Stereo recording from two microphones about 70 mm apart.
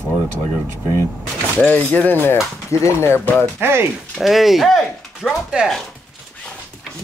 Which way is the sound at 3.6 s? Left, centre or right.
Right.